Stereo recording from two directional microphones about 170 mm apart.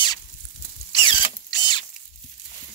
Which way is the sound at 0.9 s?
25° left (ahead or behind).